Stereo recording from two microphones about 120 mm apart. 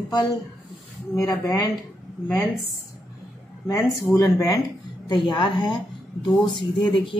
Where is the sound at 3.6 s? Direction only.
25° left (ahead or behind).